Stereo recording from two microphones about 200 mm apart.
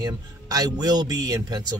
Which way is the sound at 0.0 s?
20° right (ahead or behind).